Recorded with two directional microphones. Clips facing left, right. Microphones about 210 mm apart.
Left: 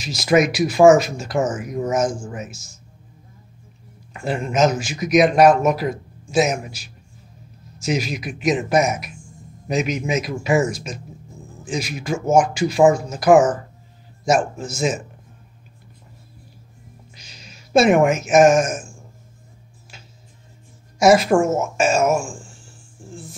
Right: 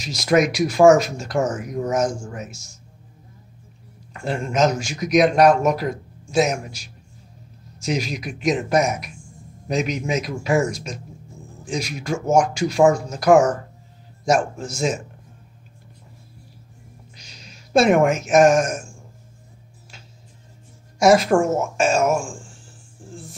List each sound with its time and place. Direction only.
0.0 s a man's voice: 5° left (ahead or behind)
4.1 s a man's voice: 5° left (ahead or behind)
17.1 s a sound: 5° left (ahead or behind)
21.0 s a man's voice: 5° left (ahead or behind)